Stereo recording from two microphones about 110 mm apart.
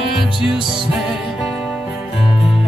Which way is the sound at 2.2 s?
55° left (ahead or behind).